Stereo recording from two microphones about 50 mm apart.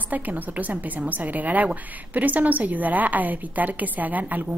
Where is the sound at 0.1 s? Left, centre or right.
Right.